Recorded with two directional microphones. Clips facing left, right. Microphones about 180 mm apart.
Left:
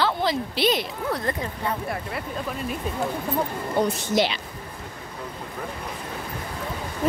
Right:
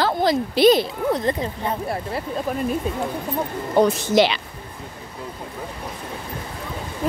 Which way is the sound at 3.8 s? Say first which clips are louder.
Right 6 dB; 90° right.